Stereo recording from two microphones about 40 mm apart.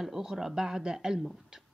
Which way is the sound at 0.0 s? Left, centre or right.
Centre.